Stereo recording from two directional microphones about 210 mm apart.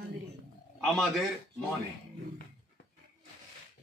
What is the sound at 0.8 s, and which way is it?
Speech, centre (ahead or behind).